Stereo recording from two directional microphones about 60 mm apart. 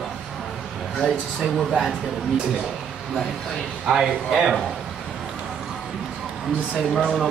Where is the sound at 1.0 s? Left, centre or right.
Centre.